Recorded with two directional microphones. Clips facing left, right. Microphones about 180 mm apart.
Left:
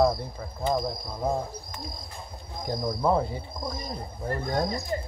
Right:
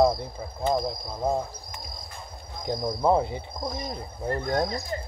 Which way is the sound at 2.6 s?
20° right (ahead or behind).